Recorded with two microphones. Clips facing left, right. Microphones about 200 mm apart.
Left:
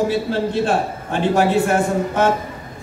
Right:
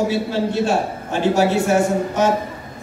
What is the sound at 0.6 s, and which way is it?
A man's voice, 55° left (ahead or behind).